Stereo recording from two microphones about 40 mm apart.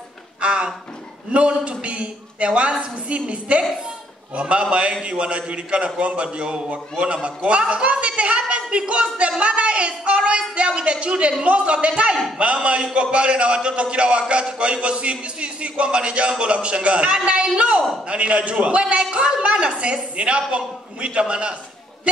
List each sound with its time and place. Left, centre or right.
0.4 s a sound: right
1.3 s a man's voice: right
12.4 s a man's voice: right